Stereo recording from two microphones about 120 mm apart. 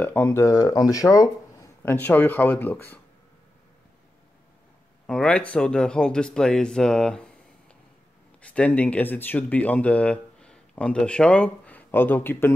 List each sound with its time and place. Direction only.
0.0 s speech: 15° left (ahead or behind)
5.0 s speech: 5° left (ahead or behind)
8.4 s speech: 10° left (ahead or behind)